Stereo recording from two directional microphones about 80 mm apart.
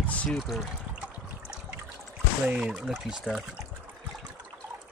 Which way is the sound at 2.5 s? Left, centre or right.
Centre.